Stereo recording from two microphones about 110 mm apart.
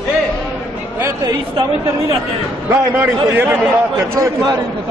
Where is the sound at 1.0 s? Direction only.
25° right (ahead or behind).